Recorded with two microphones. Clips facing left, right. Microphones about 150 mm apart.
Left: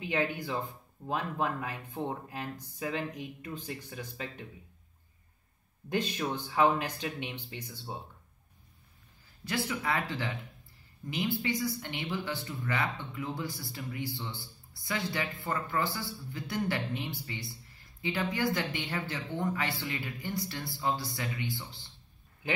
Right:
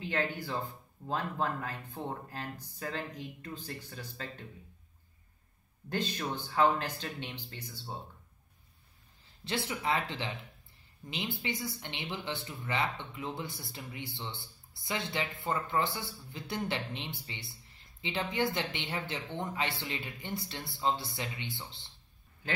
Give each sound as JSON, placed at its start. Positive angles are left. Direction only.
{"t": 0.0, "sound": "speech", "side_deg": 10}
{"t": 6.1, "sound": "speech", "side_deg": 15}
{"t": 9.4, "sound": "speech", "side_deg": -25}